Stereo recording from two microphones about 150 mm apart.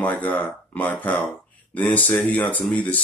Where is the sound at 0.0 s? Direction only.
10° left (ahead or behind).